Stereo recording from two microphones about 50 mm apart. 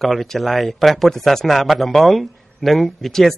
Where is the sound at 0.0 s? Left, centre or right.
Centre.